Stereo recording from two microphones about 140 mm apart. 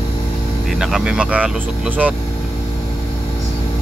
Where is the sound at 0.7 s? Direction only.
5° right (ahead or behind).